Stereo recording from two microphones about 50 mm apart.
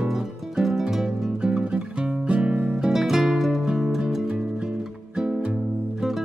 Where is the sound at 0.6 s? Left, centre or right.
Centre; by 2.6 s right.